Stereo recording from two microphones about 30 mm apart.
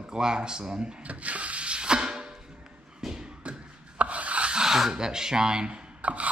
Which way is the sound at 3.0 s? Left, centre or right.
Centre.